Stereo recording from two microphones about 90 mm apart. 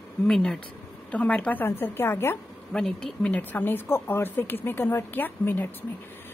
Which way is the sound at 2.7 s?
5° left (ahead or behind).